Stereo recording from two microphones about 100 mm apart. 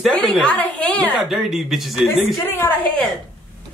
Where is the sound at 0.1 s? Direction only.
10° left (ahead or behind).